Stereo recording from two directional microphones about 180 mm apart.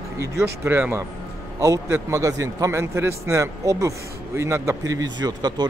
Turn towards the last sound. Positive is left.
turn(degrees=-25)  # may be behind; listen again after turning